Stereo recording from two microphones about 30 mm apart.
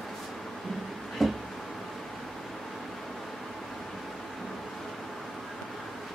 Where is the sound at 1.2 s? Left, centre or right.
Centre.